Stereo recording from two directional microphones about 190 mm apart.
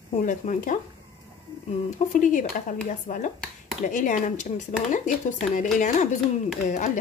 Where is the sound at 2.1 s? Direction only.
45° left (ahead or behind).